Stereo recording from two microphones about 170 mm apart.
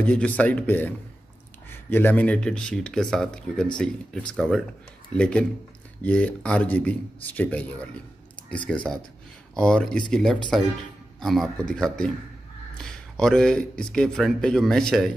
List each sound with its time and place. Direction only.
0.0 s speech: 5° left (ahead or behind)
8.4 s a sound: 5° left (ahead or behind)
9.6 s speech: 5° left (ahead or behind)